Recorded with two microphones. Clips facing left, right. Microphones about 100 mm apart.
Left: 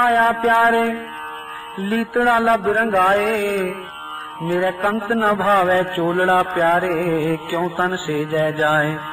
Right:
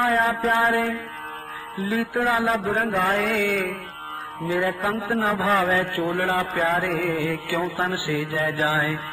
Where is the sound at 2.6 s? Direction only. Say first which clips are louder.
Left 6 dB; 65° left (ahead or behind).